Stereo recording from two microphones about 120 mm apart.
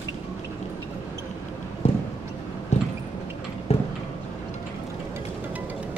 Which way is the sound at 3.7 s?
60° left (ahead or behind).